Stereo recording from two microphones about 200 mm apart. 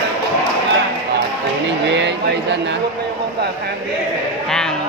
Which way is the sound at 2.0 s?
60° right (ahead or behind).